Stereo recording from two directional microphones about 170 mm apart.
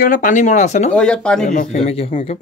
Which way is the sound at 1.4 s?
50° left (ahead or behind).